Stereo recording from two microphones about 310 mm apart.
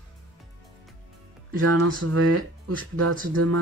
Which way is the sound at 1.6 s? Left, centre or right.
Right.